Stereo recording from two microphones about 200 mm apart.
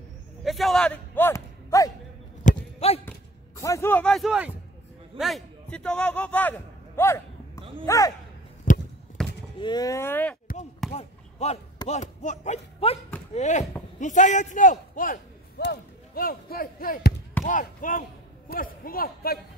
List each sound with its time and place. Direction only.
0.4 s a sound: centre (ahead or behind); by 1.9 s 15° left (ahead or behind)
2.4 s basketball bounce: 30° left (ahead or behind)
3.6 s a man's voice: 15° left (ahead or behind)
7.0 s a sound: 10° left (ahead or behind)
7.8 s speech: 15° left (ahead or behind)
8.7 s a sound: 40° left (ahead or behind)
9.2 s basketball bounce: 5° left (ahead or behind)
9.6 s speech: 20° left (ahead or behind)
10.9 s basketball bounce: 35° left (ahead or behind)
11.9 s a man's voice: 35° left (ahead or behind)
15.6 s speech: 50° left (ahead or behind)